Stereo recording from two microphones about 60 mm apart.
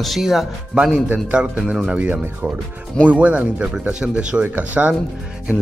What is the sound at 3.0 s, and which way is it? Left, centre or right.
A man's voice, right.